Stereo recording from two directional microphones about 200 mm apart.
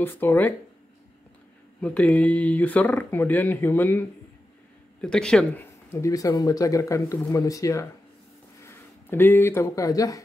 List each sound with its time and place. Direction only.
0.0 s speech: 10° left (ahead or behind)
1.8 s speech: 5° left (ahead or behind)
5.0 s speech: 5° left (ahead or behind)